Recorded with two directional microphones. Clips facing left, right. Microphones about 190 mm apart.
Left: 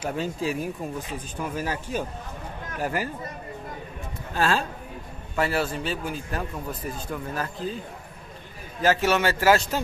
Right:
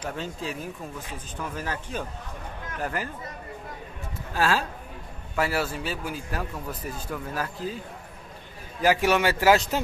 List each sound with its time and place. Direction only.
0.0 s speech: 10° left (ahead or behind)
4.3 s a man's voice: 5° right (ahead or behind)
8.8 s a man's voice: 15° right (ahead or behind)